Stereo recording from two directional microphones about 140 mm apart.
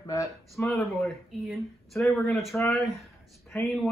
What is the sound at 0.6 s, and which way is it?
A man's voice, centre (ahead or behind).